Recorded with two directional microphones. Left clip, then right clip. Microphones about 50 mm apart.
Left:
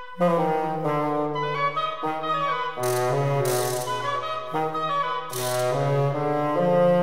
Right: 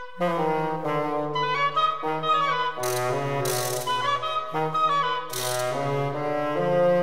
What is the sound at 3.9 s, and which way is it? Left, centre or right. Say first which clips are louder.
Music: right 2 dB; right.